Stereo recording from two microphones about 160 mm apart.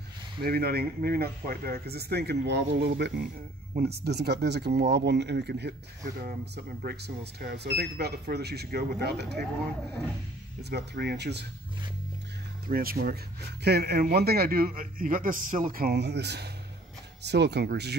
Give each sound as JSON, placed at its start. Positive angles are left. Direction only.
{"t": 0.4, "sound": "speech", "side_deg": -75}
{"t": 10.6, "sound": "speech", "side_deg": -90}
{"t": 12.6, "sound": "speech", "side_deg": -65}
{"t": 13.7, "sound": "speech", "side_deg": -90}
{"t": 14.1, "sound": "speech", "side_deg": -80}